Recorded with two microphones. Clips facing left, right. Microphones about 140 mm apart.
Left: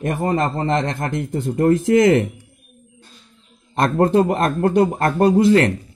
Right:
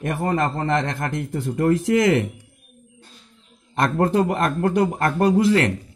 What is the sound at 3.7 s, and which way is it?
A man's voice, 30° left (ahead or behind).